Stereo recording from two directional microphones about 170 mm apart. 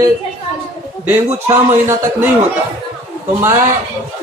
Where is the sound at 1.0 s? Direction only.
15° right (ahead or behind).